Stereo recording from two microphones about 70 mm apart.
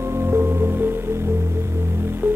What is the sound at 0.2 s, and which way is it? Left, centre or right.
Music, right.